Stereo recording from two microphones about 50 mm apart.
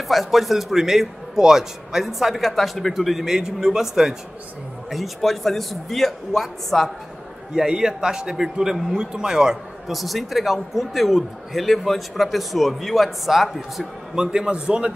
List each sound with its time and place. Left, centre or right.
0.1 s a man's voice: centre
3.3 s a man's voice: centre
7.5 s a man's voice: centre
9.8 s a man's voice: centre
14.1 s a man's voice: centre